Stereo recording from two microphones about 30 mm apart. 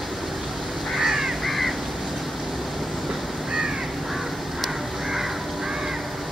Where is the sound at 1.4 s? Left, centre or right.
Centre.